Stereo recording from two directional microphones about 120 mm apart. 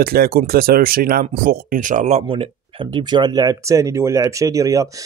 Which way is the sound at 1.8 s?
85° right.